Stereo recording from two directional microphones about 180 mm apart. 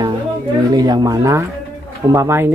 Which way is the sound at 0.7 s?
20° right (ahead or behind).